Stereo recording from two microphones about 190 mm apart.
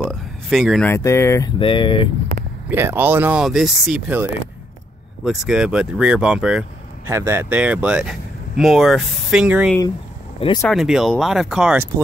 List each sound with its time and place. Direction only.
0.1 s speech: centre (ahead or behind)
0.8 s speech: 15° left (ahead or behind)
1.6 s speech: 25° left (ahead or behind)
2.7 s speech: 10° right (ahead or behind)
10.4 s speech: 20° left (ahead or behind)
10.7 s speech: centre (ahead or behind)